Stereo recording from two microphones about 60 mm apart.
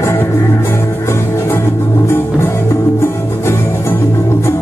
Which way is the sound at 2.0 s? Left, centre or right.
Left.